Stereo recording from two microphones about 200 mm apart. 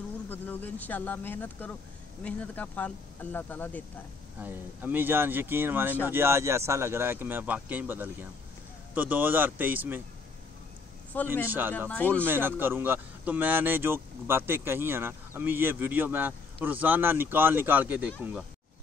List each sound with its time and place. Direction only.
0.3 s speech: 10° left (ahead or behind)
4.4 s speech: 10° right (ahead or behind)
11.4 s speech: 10° right (ahead or behind)
11.9 s speech: 5° left (ahead or behind)
12.3 s speech: 10° right (ahead or behind)